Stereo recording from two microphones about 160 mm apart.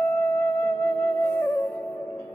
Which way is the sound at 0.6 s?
10° left (ahead or behind).